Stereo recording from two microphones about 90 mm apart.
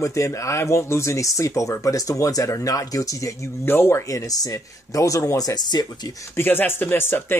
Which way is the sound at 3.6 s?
25° left (ahead or behind).